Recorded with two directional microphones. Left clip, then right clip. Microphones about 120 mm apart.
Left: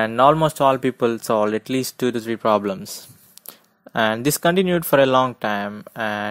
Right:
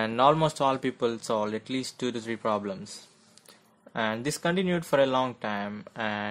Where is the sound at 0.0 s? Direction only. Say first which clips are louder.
Left 7 dB; 45° left (ahead or behind); by 5.7 s 65° left (ahead or behind).